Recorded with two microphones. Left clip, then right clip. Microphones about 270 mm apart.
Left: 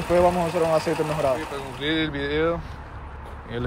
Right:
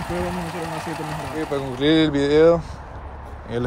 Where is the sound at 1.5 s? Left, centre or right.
Right.